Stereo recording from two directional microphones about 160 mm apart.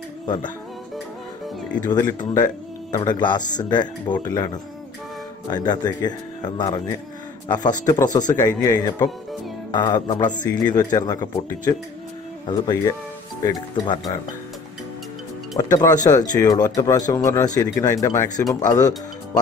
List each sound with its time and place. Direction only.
1.9 s speech: 25° left (ahead or behind)
5.5 s speech: 25° left (ahead or behind)
12.4 s speech: 25° left (ahead or behind)
15.5 s speech: 20° left (ahead or behind)